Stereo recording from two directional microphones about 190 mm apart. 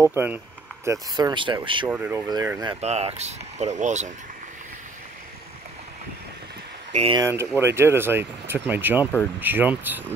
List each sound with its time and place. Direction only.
0.1 s speech: 10° right (ahead or behind); by 1.9 s 25° right (ahead or behind)
1.9 s speech: 10° right (ahead or behind)
2.2 s speech: 20° right (ahead or behind); by 4.1 s 40° right (ahead or behind)
6.9 s speech: 35° right (ahead or behind)
7.2 s speech: 15° right (ahead or behind)